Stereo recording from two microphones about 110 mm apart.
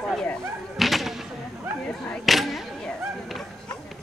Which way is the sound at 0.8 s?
Centre (ahead or behind).